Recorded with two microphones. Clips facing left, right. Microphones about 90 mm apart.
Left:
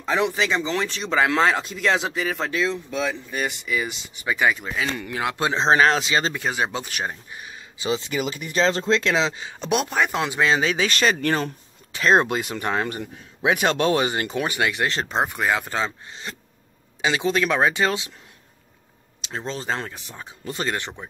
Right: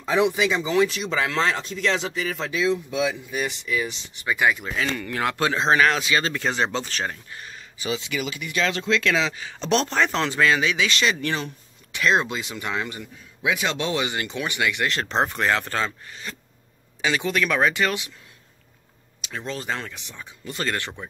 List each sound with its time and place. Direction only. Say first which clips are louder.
0.0 s speech: right 2 dB; 15° right (ahead or behind)
1.3 s speech: left 4 dB; 5° left (ahead or behind)
2.6 s speech: right 5 dB; 10° right (ahead or behind)
3.4 s speech: left 2 dB; 5° left (ahead or behind); by 6.3 s 25° left (ahead or behind)
6.3 s speech: right 1 dB; 10° left (ahead or behind)
7.9 s speech: left 3 dB; 40° left (ahead or behind)
9.6 s speech: right 1 dB; 10° left (ahead or behind)
10.5 s speech: left 1 dB; 35° left (ahead or behind)
13.4 s speech: left 5 dB; 50° left (ahead or behind); by 15.0 s 30° left (ahead or behind)
15.0 s speech: right 3 dB; 10° left (ahead or behind); by 18.1 s 25° left (ahead or behind)
19.2 s speech: left 2 dB; 30° left (ahead or behind)
20.5 s speech: even; 20° left (ahead or behind)